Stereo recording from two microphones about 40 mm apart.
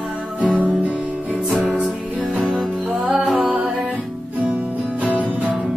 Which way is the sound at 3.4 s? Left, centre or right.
Right.